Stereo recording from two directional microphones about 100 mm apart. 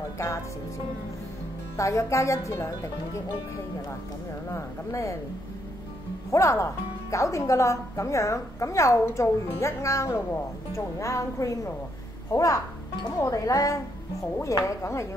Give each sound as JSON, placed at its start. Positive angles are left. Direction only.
{"t": 1.8, "sound": "speech", "side_deg": 30}
{"t": 4.5, "sound": "speech", "side_deg": 30}
{"t": 6.3, "sound": "speech", "side_deg": 30}